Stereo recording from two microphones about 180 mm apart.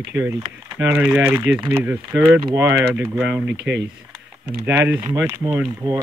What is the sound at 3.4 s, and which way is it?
Speech, 75° right (ahead or behind).